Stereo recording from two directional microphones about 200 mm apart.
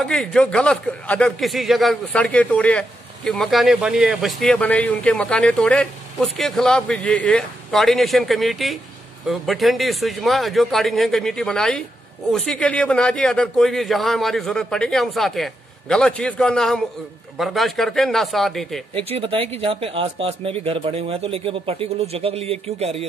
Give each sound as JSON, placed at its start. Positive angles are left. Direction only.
{"t": 0.0, "sound": "a man's voice", "side_deg": 5}
{"t": 18.9, "sound": "speech", "side_deg": -30}